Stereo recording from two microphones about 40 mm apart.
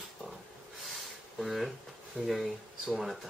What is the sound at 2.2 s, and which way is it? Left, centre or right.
Speech, right.